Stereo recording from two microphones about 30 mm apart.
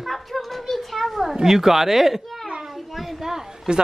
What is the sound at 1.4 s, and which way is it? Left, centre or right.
Speech, centre.